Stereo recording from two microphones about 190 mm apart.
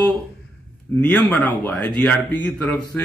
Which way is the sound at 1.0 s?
5° left (ahead or behind).